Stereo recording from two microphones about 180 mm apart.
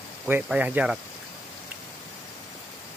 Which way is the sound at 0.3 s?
10° right (ahead or behind).